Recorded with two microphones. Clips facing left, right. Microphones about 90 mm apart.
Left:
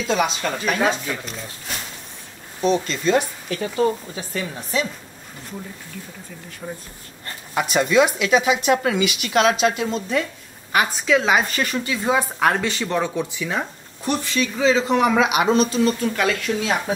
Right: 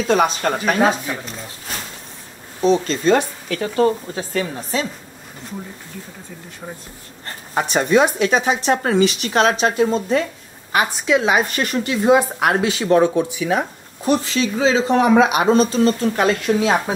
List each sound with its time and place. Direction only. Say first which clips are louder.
0.1 s speech: right 4 dB; 45° right (ahead or behind)
2.6 s speech: right 4 dB; 35° right (ahead or behind)
3.4 s speech: right 3 dB; 50° right (ahead or behind)
7.2 s speech: right 2 dB; 35° right (ahead or behind)
11.6 s speech: right 3 dB; 50° right (ahead or behind)
12.0 s speech: right 5 dB; 15° right (ahead or behind); by 16.9 s 30° right (ahead or behind)